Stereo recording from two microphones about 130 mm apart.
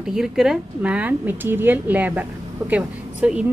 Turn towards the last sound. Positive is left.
turn(degrees=-10)  # may be behind; listen again after turning